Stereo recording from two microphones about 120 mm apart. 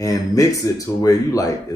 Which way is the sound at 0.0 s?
30° left (ahead or behind).